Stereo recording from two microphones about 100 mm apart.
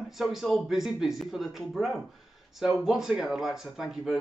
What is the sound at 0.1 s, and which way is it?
Speech, 5° right (ahead or behind).